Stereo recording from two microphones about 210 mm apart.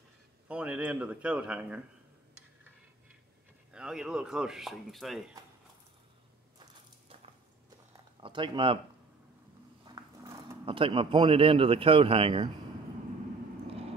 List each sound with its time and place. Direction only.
0.5 s speech: 5° right (ahead or behind)
3.7 s speech: 5° right (ahead or behind)
8.2 s speech: 25° right (ahead or behind)
9.8 s speech: 20° right (ahead or behind)